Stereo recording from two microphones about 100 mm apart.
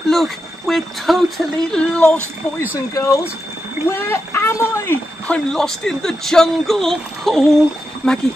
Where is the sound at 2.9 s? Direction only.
30° left (ahead or behind).